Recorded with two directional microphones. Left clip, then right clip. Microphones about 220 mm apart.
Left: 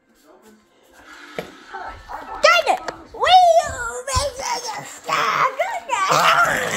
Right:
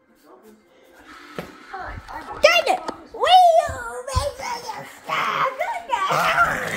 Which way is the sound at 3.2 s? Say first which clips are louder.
Left 1 dB; 10° left (ahead or behind).